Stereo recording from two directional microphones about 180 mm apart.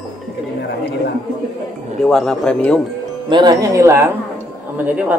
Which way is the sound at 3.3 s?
25° right (ahead or behind).